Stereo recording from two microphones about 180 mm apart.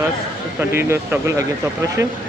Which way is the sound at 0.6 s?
15° right (ahead or behind).